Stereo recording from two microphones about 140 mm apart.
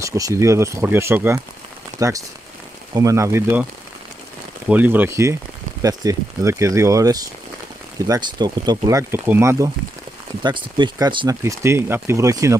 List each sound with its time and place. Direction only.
0.0 s speech: 20° right (ahead or behind)
4.6 s speech: 10° right (ahead or behind)
10.4 s speech: 30° right (ahead or behind)
11.4 s speech: 20° right (ahead or behind)